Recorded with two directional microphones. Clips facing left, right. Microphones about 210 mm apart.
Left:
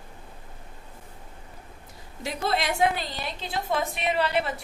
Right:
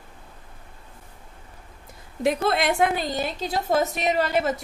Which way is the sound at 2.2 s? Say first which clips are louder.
Right 6 dB; 55° right (ahead or behind).